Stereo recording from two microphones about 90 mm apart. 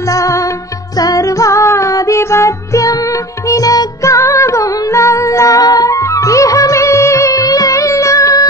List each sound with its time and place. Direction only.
0.1 s music: 35° left (ahead or behind)